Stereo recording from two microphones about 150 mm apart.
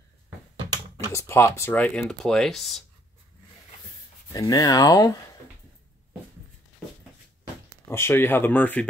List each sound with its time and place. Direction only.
0.9 s speech: 20° left (ahead or behind); by 2.8 s centre (ahead or behind)
4.3 s speech: 25° left (ahead or behind)
7.9 s speech: 15° left (ahead or behind)